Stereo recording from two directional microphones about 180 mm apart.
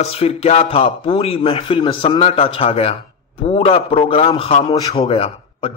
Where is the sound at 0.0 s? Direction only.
35° left (ahead or behind).